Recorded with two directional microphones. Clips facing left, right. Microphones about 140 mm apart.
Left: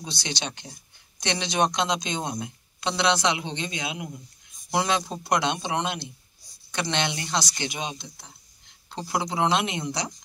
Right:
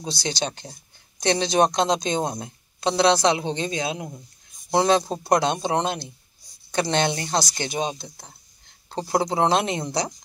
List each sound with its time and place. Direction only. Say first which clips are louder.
0.0 s a woman's voice: right 5 dB; 35° right (ahead or behind)